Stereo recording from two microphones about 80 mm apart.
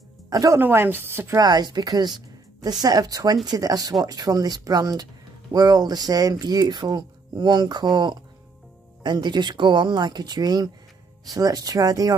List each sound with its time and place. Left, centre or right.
0.3 s speech: right
0.6 s a woman's voice: right
1.4 s a woman's voice: right